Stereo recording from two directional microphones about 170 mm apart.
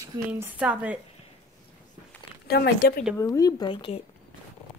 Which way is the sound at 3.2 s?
20° left (ahead or behind).